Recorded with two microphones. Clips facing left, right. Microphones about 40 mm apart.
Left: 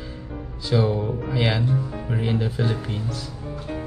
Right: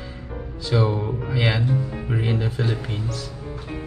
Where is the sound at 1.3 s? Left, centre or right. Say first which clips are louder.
Right 1 dB; centre.